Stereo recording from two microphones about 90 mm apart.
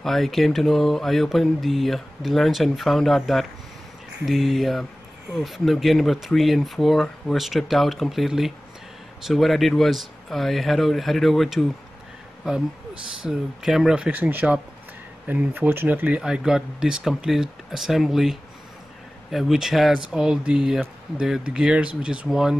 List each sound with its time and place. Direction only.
0.0 s mantra: centre (ahead or behind)
12.4 s speech: 5° right (ahead or behind)
16.2 s speech: 5° right (ahead or behind)
17.2 s mantra: 5° right (ahead or behind)
20.1 s speech: 10° right (ahead or behind)
22.3 s mantra: 5° right (ahead or behind)